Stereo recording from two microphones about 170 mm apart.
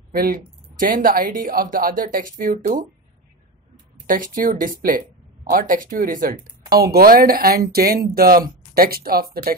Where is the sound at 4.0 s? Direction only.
55° right (ahead or behind).